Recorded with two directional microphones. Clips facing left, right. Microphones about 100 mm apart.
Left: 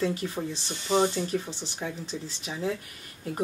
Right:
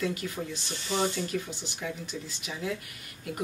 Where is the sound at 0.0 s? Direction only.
30° left (ahead or behind).